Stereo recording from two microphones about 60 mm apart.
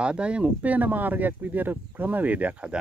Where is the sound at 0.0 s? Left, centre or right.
Centre.